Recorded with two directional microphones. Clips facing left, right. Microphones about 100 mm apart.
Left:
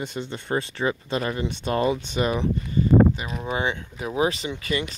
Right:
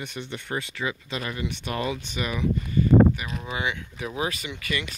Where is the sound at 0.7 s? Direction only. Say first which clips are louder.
Left 6 dB; 35° left (ahead or behind).